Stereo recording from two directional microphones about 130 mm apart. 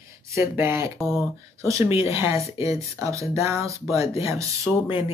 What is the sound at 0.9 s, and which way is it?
Speech, centre (ahead or behind).